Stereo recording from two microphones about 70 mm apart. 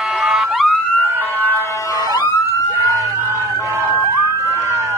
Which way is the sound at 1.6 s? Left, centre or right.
Left.